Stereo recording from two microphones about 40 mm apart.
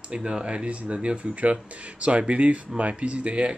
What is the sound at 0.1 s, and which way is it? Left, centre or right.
Speech, right.